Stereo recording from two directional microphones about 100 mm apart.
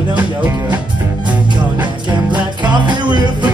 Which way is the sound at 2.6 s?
50° right (ahead or behind).